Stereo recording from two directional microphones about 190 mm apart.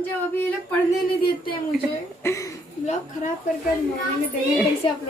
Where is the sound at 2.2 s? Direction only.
15° left (ahead or behind).